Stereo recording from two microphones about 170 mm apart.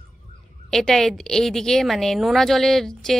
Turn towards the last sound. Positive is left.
turn(degrees=0)  # may be behind; listen again after turning